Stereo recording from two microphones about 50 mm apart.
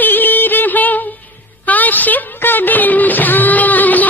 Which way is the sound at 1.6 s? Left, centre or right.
Left.